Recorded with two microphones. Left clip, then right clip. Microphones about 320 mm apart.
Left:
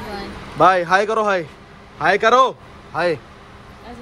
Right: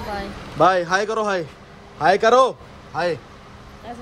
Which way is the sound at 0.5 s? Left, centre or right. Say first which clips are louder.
Left 3 dB; centre.